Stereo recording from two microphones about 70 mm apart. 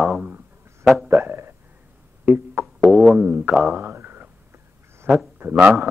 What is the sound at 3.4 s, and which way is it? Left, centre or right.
Speech, centre.